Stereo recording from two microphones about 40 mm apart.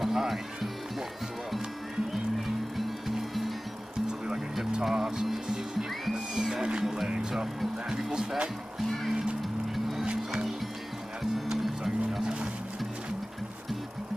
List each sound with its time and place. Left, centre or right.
0.0 s music: centre
3.2 s music: centre
4.8 s music: centre
6.5 s music: right
8.1 s music: centre
11.6 s music: centre